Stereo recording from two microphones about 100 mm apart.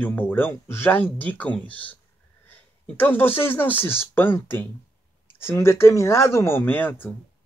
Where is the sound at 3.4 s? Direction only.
20° left (ahead or behind).